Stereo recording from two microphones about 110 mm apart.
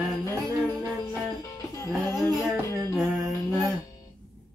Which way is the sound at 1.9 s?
Centre (ahead or behind).